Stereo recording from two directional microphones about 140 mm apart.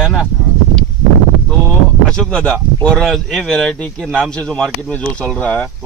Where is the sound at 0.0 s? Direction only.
Centre (ahead or behind).